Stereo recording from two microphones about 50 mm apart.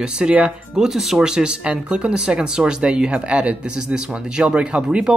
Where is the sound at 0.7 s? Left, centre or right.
Centre.